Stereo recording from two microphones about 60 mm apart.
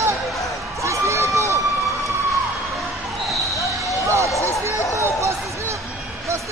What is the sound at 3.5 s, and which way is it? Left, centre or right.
Basketball bounce, left.